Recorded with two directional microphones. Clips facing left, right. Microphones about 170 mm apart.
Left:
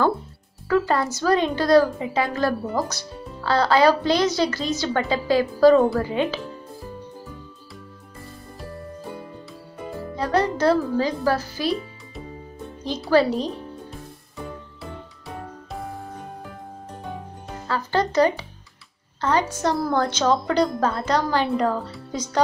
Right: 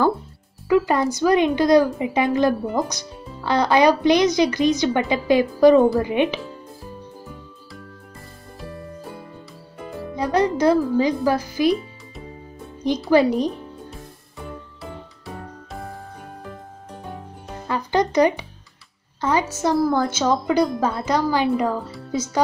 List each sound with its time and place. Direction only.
0.7 s a woman's voice: 15° right (ahead or behind)
10.1 s speech: 15° right (ahead or behind)
13.1 s a woman's voice: 15° right (ahead or behind)
14.8 s music: centre (ahead or behind)
17.6 s music: 15° right (ahead or behind)
19.2 s a woman's voice: 10° right (ahead or behind)